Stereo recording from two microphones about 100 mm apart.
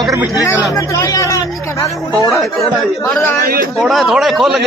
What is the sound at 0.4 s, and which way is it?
Speech, 35° left (ahead or behind).